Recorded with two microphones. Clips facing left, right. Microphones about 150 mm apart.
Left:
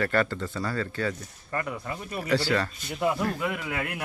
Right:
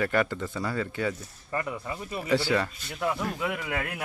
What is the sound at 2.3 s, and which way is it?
Speech, 20° right (ahead or behind).